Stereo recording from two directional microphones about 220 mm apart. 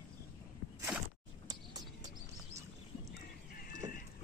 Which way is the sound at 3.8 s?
20° right (ahead or behind).